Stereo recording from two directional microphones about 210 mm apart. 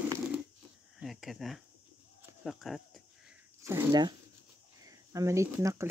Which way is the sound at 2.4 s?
Centre (ahead or behind).